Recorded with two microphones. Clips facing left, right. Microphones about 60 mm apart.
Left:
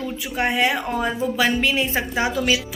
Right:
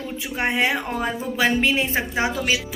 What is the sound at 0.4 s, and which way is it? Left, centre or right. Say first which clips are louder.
A woman's voice: left 1 dB; right.